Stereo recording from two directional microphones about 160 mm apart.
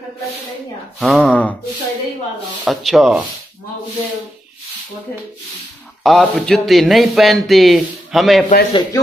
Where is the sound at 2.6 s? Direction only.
Centre (ahead or behind).